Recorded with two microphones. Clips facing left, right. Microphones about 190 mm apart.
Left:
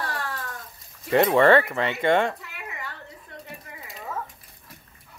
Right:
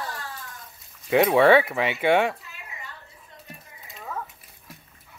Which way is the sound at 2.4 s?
70° left (ahead or behind).